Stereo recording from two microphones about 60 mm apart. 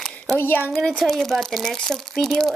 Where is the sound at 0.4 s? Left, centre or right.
Left.